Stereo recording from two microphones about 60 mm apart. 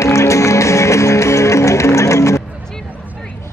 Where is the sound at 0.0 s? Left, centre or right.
Left.